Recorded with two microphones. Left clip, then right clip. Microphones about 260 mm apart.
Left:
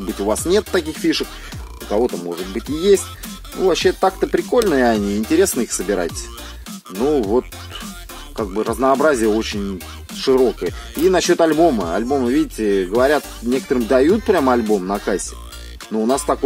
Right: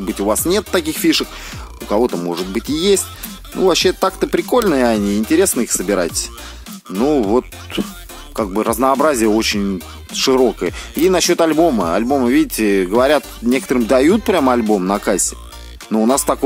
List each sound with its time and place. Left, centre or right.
0.2 s speech: right